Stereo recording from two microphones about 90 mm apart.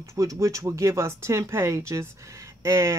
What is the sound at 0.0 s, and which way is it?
Speech, 35° right (ahead or behind).